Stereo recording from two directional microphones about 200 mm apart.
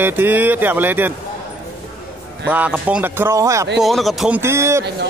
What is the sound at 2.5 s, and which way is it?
Speech, 10° right (ahead or behind).